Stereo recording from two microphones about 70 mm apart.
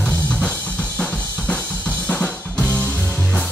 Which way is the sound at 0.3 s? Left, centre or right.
Centre.